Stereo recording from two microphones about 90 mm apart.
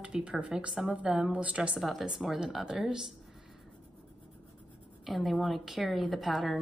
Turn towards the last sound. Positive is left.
turn(degrees=0)  # may be behind; listen again after turning